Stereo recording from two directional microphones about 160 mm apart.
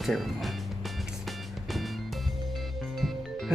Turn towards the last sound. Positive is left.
turn(degrees=0)  # may be behind; listen again after turning